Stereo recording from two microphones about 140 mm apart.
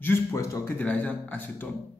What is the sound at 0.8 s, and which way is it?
Speech, 10° left (ahead or behind).